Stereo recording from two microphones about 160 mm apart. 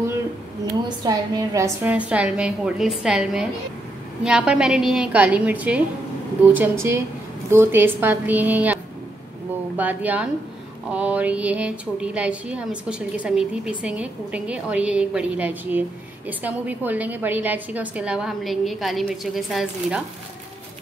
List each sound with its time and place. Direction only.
0.8 s a woman's voice: 25° right (ahead or behind)
1.8 s a woman's voice: 10° right (ahead or behind)
9.8 s speech: 10° right (ahead or behind)